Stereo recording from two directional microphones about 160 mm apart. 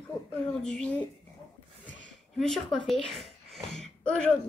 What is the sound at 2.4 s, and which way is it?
A woman's voice, 5° left (ahead or behind).